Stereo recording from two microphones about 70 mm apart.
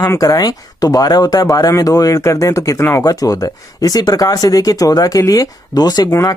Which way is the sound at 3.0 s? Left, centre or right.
Left.